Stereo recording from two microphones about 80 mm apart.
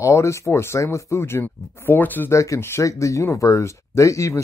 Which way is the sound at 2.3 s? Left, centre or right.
Left.